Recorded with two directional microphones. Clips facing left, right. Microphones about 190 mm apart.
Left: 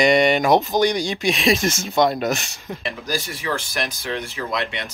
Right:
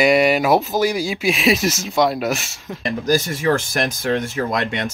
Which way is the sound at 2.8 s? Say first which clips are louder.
Right 9 dB; 45° right (ahead or behind).